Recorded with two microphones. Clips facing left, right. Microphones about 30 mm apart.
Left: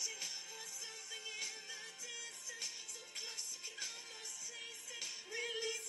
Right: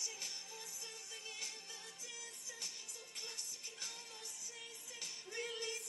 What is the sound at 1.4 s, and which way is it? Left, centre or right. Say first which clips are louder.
Music: left 2 dB; centre.